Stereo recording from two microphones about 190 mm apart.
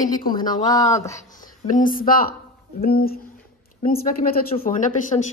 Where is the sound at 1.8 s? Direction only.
45° left (ahead or behind).